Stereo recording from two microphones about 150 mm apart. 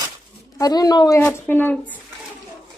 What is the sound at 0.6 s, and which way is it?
Speech, 25° left (ahead or behind).